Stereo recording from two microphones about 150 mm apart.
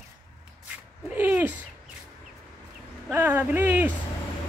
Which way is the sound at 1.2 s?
15° right (ahead or behind).